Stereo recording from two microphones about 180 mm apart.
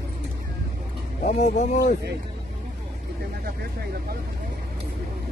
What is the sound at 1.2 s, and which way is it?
Speech, 40° left (ahead or behind).